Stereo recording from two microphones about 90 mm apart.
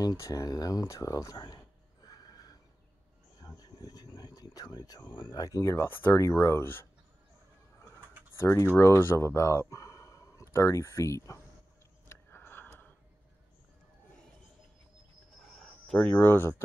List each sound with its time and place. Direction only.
0.0 s speech: 40° left (ahead or behind)
3.3 s cricket: 50° left (ahead or behind)
5.1 s speech: 65° left (ahead or behind)
5.4 s speech: 35° left (ahead or behind)
5.8 s speech: 25° left (ahead or behind)
8.4 s speech: 30° left (ahead or behind)
12.1 s a sound: 25° left (ahead or behind)
16.0 s speech: 25° left (ahead or behind)